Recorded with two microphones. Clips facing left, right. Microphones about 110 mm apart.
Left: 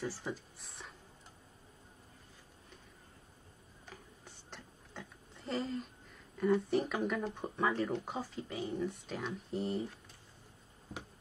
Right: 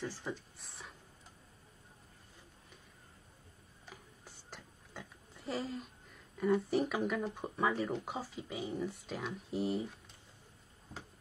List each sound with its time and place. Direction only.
0.0 s speech: 5° left (ahead or behind)
4.5 s a sound: 5° right (ahead or behind)
6.3 s speech: centre (ahead or behind)